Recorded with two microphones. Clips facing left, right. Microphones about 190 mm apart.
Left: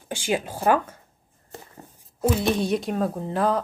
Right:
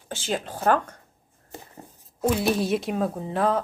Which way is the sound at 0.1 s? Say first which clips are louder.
Left 3 dB; 10° left (ahead or behind).